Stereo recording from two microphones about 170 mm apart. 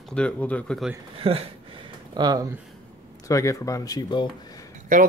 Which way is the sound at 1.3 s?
35° right (ahead or behind).